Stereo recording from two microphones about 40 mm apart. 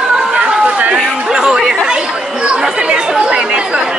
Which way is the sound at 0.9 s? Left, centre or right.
Centre.